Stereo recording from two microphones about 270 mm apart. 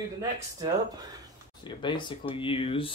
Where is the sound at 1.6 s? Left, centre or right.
Centre.